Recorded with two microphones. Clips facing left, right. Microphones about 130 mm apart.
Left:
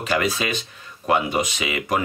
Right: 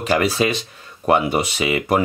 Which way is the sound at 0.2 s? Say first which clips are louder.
Right 5 dB; 35° right (ahead or behind).